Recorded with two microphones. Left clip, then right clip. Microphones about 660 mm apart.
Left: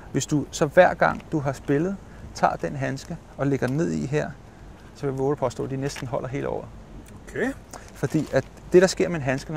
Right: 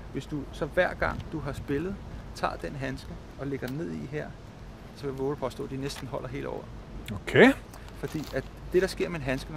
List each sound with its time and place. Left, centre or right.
0.1 s speech: left
7.1 s speech: right
8.0 s speech: left